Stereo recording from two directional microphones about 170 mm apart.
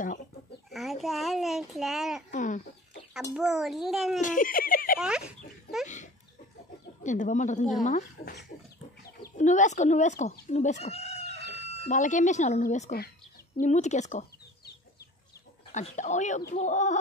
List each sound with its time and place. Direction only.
0.7 s chicken: centre (ahead or behind)
1.0 s a child's voice: centre (ahead or behind)
2.3 s a woman's voice: 50° left (ahead or behind)
3.3 s a child's voice: centre (ahead or behind)
4.2 s speech: 50° left (ahead or behind)
4.9 s a child's voice: 5° right (ahead or behind)
7.0 s a woman's voice: 45° left (ahead or behind)
9.4 s a woman's voice: 45° left (ahead or behind)
11.2 s chicken: 80° right
11.6 s a woman's voice: 45° left (ahead or behind)
15.7 s a woman's voice: 45° left (ahead or behind)